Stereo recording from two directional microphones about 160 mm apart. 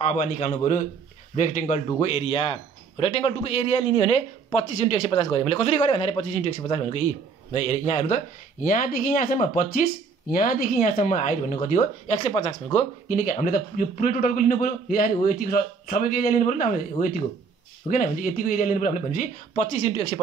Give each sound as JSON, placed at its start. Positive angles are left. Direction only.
{"t": 0.0, "sound": "a man's voice", "side_deg": 45}
{"t": 2.0, "sound": "a man's voice", "side_deg": 35}
{"t": 8.6, "sound": "a man's voice", "side_deg": 60}